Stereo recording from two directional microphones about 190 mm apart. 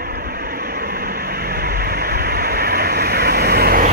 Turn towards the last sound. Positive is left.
turn(degrees=-50)  # may be behind; listen again after turning